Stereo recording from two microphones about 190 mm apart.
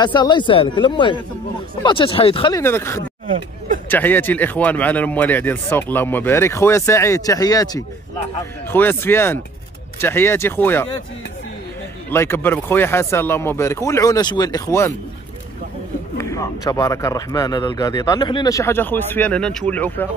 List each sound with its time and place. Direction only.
0.0 s speech: 25° left (ahead or behind)
2.6 s speech: 15° left (ahead or behind)
12.1 s speech: 10° left (ahead or behind)
16.2 s speech: 15° left (ahead or behind)